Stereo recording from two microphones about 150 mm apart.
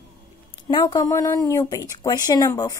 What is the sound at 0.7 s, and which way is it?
A woman's voice, 25° left (ahead or behind).